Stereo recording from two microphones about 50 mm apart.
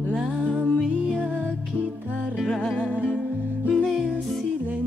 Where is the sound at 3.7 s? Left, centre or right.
Centre.